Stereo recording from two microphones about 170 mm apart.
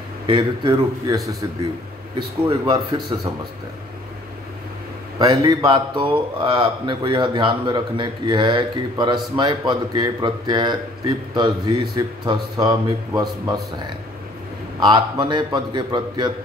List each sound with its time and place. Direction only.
0.3 s speech: 25° right (ahead or behind)
2.1 s speech: 25° right (ahead or behind)
5.3 s speech: 20° right (ahead or behind)
14.8 s speech: 25° right (ahead or behind)